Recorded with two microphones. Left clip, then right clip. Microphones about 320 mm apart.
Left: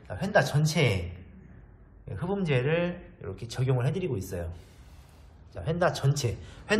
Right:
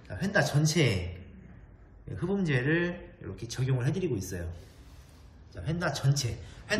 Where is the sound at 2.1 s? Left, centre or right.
Centre.